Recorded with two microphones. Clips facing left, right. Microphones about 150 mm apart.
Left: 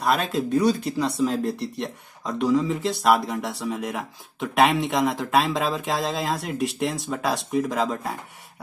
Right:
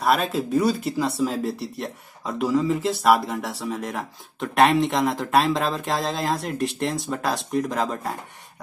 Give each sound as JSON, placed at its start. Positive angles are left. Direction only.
{"t": 0.0, "sound": "speech", "side_deg": 0}